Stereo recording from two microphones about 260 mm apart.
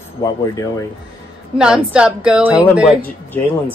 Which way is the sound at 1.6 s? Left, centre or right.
Centre.